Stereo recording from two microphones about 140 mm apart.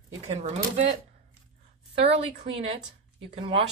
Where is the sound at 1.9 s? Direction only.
45° right (ahead or behind).